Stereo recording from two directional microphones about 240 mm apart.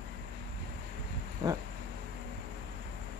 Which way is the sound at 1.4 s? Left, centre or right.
Centre.